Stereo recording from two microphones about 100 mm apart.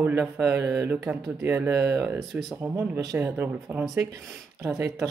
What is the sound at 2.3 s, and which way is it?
Speech, centre (ahead or behind).